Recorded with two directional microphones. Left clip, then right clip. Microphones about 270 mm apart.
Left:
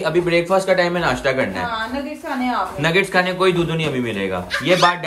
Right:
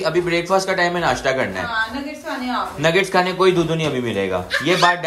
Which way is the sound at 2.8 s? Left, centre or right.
Centre.